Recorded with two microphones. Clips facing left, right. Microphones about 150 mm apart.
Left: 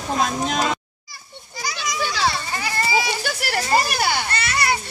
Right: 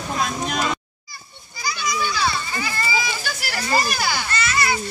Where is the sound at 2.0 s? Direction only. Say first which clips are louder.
Left 2 dB; 75° left (ahead or behind).